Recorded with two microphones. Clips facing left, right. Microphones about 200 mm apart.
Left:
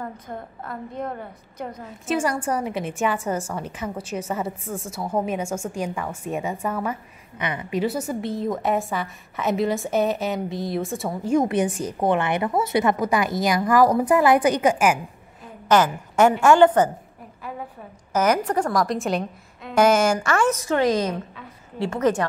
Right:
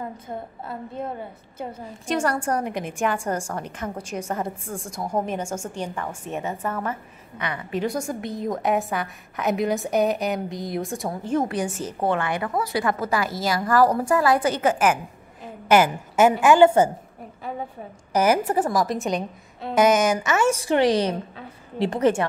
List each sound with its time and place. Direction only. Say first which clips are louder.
0.3 s a woman's voice: right 1 dB; 15° right (ahead or behind)
1.9 s a woman's voice: even; 5° left (ahead or behind)
7.8 s a woman's voice: left 2 dB; 5° left (ahead or behind)
11.3 s a woman's voice: left 4 dB; 20° left (ahead or behind)
15.7 s a woman's voice: right 1 dB; 10° right (ahead or behind)
18.1 s a woman's voice: right 1 dB; 10° right (ahead or behind)
20.3 s a woman's voice: even; 10° right (ahead or behind)
20.7 s a woman's voice: right 2 dB; 30° right (ahead or behind)